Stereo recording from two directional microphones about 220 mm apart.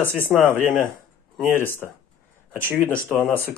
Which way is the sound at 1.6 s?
10° left (ahead or behind).